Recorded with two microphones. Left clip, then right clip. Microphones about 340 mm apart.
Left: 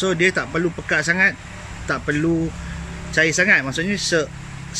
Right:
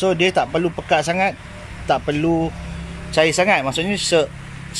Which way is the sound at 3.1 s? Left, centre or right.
Centre.